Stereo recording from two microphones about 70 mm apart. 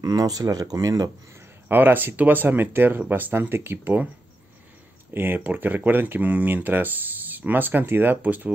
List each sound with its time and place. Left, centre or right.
0.0 s speech: right
1.7 s speech: right
5.1 s speech: right